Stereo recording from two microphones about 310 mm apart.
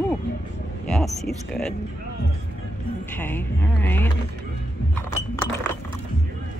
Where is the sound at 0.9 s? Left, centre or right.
Centre.